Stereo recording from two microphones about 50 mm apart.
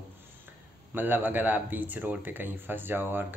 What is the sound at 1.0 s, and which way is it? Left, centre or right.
Speech, right.